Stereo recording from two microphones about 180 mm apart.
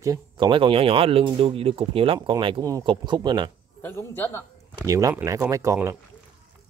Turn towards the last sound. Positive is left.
turn(degrees=-15)  # may be behind; listen again after turning